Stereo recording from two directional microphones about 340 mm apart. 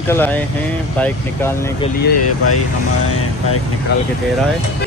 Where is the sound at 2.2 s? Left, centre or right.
Left.